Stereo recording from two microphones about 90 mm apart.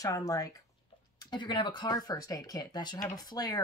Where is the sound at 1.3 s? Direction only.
60° left (ahead or behind).